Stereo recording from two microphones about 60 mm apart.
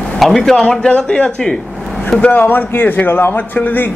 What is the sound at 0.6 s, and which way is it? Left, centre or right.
Speech, centre.